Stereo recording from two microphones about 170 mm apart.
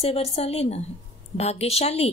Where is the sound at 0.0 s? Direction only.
35° left (ahead or behind).